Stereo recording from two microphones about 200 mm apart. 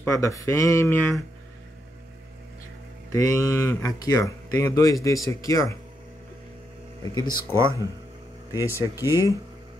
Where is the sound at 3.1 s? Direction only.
15° left (ahead or behind).